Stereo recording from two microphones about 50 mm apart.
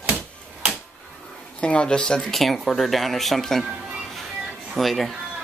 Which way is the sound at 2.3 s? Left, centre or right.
Centre.